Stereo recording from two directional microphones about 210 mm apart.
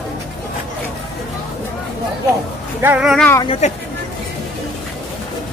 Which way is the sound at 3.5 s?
30° left (ahead or behind).